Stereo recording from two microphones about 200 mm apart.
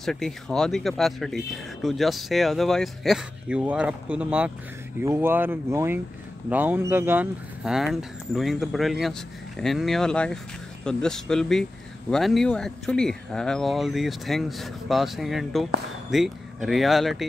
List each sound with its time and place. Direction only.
0.0 s speech: centre (ahead or behind)